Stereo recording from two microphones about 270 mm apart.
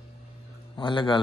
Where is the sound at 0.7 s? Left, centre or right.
Centre.